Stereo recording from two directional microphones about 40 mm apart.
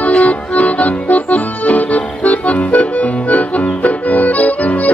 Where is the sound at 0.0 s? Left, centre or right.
Left.